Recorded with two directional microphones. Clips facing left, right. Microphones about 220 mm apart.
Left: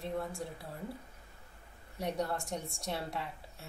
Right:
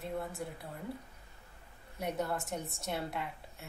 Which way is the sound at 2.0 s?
5° right (ahead or behind).